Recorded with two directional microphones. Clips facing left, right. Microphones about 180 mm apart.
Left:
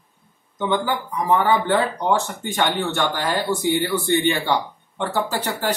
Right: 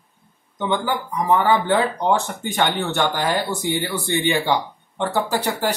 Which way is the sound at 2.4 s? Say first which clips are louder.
Even; 15° right (ahead or behind).